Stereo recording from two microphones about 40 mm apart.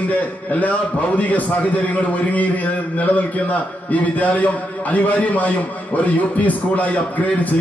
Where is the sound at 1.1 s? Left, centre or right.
Left.